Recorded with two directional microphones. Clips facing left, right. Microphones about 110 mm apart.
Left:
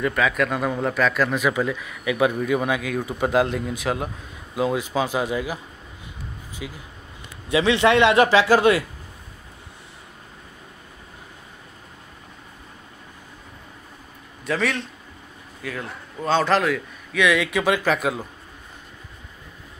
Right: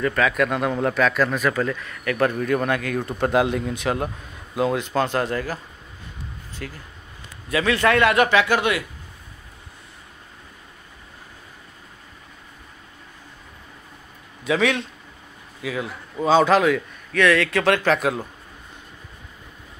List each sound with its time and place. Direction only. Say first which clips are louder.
0.0 s speech: right 1 dB; 5° left (ahead or behind)
7.4 s a man's voice: left 2 dB; 25° left (ahead or behind)
14.4 s a man's voice: right 3 dB; centre (ahead or behind)
17.2 s speech: right 2 dB; 10° left (ahead or behind)